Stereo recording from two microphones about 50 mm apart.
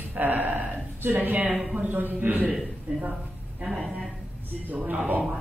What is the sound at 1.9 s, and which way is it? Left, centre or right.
Speech, right.